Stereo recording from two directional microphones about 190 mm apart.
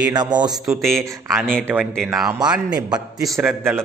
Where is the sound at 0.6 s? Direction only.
Centre (ahead or behind).